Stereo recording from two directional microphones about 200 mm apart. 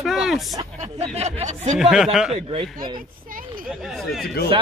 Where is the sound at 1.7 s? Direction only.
Centre (ahead or behind).